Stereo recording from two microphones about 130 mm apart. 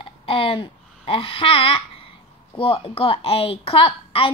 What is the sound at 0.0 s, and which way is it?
A woman's voice, 45° left (ahead or behind).